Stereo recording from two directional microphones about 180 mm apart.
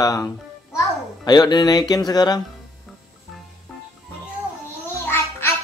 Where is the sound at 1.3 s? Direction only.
25° left (ahead or behind).